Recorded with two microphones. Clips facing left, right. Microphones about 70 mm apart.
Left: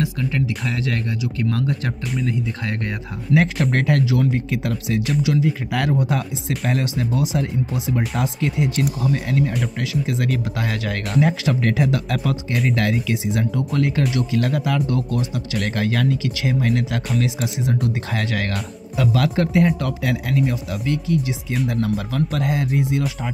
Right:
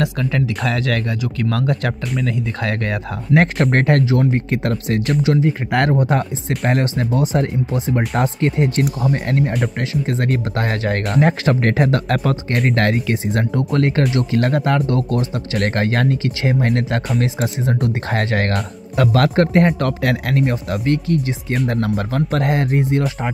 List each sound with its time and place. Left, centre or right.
0.0 s speech: right
3.3 s speech: right